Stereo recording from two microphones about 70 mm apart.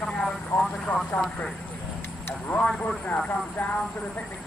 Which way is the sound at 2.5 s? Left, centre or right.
Centre.